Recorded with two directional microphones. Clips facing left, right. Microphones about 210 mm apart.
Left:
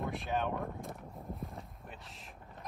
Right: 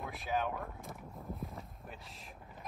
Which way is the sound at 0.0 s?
Centre (ahead or behind).